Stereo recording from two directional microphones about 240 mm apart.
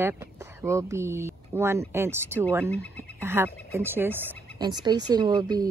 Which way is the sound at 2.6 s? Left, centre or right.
Centre.